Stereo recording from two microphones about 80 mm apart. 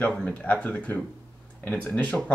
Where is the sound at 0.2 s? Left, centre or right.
Centre.